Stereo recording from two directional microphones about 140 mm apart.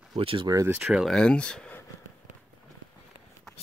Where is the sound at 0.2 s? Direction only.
40° right (ahead or behind).